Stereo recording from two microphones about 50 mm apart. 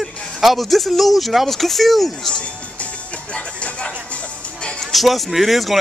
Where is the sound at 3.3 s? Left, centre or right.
Left.